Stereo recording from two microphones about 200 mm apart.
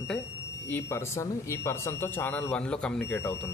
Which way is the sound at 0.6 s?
10° left (ahead or behind).